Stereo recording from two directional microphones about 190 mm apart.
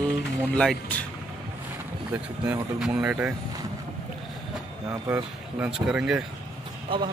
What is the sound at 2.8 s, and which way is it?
Speech, 5° right (ahead or behind).